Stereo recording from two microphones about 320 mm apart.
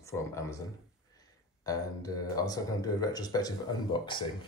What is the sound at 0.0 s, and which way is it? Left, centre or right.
Speech, centre.